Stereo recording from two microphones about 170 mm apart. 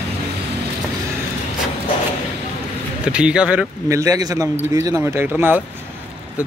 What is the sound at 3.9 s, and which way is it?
A man's voice, 20° right (ahead or behind).